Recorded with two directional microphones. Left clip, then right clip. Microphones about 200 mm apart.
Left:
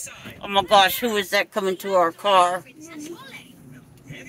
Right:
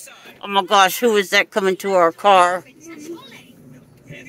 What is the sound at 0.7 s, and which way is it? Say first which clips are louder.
Speech: right 3 dB; 45° right (ahead or behind).